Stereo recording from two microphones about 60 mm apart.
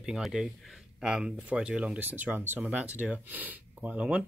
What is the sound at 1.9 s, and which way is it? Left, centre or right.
Speech, right.